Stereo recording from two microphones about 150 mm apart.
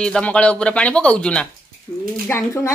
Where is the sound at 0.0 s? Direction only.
5° left (ahead or behind).